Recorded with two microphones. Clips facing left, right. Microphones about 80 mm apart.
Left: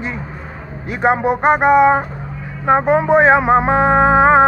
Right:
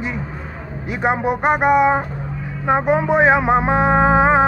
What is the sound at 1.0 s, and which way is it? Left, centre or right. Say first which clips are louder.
Speech: left 4 dB; left.